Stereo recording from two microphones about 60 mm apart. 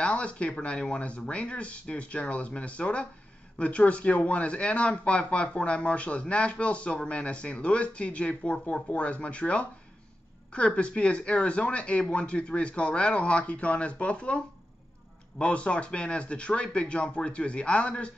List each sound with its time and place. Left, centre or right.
0.0 s speech: centre